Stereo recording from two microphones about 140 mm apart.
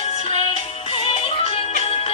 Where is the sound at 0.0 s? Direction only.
50° left (ahead or behind).